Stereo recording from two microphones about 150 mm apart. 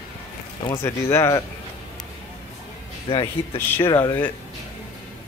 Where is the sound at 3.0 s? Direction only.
40° left (ahead or behind).